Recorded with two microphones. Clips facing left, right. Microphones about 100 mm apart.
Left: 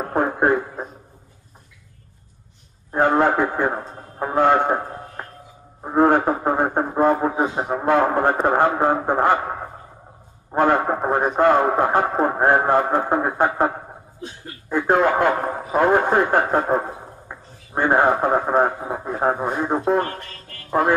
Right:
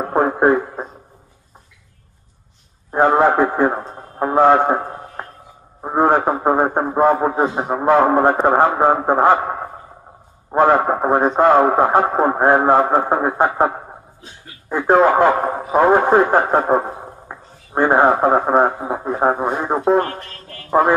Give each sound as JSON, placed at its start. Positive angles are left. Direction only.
{"t": 0.1, "sound": "speech", "side_deg": -20}
{"t": 2.9, "sound": "a man's voice", "side_deg": -20}
{"t": 5.8, "sound": "a sound", "side_deg": -25}
{"t": 6.2, "sound": "a man's voice", "side_deg": -20}
{"t": 7.6, "sound": "a man's voice", "side_deg": -30}
{"t": 8.9, "sound": "a man's voice", "side_deg": -20}
{"t": 14.7, "sound": "a man's voice", "side_deg": -25}
{"t": 17.3, "sound": "a sound", "side_deg": -20}
{"t": 18.3, "sound": "a man's voice", "side_deg": -20}